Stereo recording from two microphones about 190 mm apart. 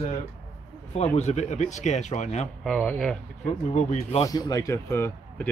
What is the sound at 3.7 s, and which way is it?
Speech, 30° left (ahead or behind).